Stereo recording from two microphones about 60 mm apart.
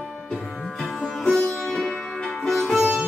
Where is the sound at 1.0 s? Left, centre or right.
Centre.